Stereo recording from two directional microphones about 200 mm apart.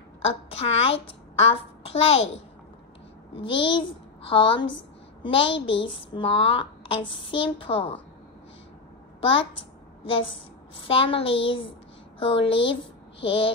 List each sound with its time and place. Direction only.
0.2 s a child's voice: 30° left (ahead or behind)
3.3 s a child's voice: 25° left (ahead or behind)
9.2 s a woman's voice: 25° left (ahead or behind)